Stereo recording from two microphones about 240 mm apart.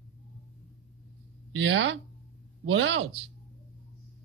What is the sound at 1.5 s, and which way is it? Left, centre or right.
Speech, right.